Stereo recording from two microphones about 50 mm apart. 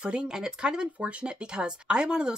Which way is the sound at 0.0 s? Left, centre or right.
Centre.